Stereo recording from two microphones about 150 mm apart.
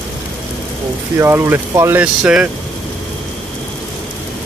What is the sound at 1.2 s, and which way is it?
Speech, 15° right (ahead or behind).